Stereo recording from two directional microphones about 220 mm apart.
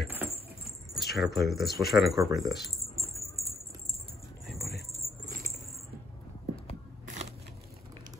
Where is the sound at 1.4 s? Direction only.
Centre (ahead or behind).